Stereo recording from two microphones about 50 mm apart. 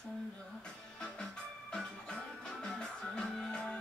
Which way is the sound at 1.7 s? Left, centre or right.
Centre.